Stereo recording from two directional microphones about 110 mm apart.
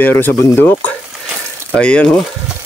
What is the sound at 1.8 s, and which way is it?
Speech, 10° left (ahead or behind).